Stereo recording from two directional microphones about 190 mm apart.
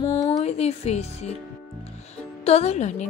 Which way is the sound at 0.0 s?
20° left (ahead or behind).